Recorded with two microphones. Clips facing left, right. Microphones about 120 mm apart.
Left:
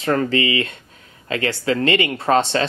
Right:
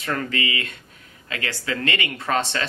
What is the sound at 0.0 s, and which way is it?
Speech, 30° left (ahead or behind).